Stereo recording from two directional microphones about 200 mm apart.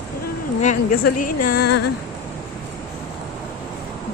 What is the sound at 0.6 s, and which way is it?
A woman's voice, 40° left (ahead or behind).